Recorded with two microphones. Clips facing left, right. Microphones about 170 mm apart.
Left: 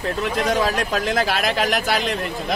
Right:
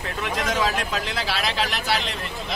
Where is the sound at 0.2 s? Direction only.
40° left (ahead or behind).